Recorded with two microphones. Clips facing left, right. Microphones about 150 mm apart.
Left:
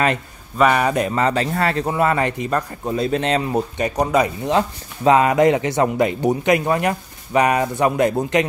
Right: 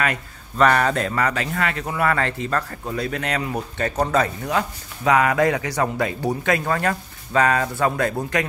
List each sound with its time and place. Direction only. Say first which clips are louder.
0.6 s speech: left 2 dB; 10° left (ahead or behind); by 3.6 s 25° left (ahead or behind)
3.7 s speech: left 1 dB; 15° left (ahead or behind)
4.5 s speech: left 5 dB; 25° left (ahead or behind)